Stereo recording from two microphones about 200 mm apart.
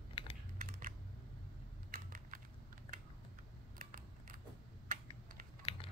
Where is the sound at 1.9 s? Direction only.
45° right (ahead or behind).